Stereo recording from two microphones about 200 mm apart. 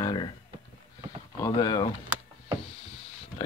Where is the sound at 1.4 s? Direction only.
20° left (ahead or behind).